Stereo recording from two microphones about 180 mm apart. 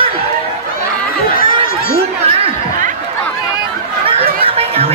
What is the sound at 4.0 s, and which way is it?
Chatter, 30° right (ahead or behind).